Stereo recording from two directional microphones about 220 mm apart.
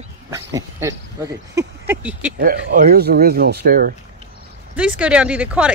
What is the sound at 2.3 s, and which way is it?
Speech, 40° right (ahead or behind).